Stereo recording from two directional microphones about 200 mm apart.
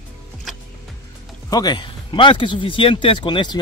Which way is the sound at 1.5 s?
20° left (ahead or behind).